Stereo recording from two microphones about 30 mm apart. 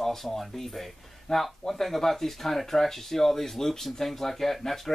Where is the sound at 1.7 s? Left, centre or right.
Centre.